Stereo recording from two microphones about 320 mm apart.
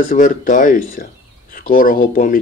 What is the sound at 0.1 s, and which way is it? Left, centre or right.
Speech, left.